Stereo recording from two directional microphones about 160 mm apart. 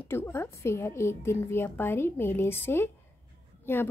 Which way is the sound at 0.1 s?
15° left (ahead or behind).